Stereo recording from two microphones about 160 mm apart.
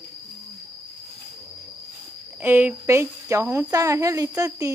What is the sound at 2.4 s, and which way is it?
Speech, 10° right (ahead or behind).